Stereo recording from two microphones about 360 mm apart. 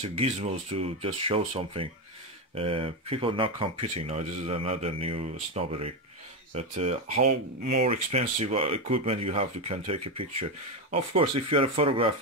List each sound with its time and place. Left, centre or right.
0.0 s speech: centre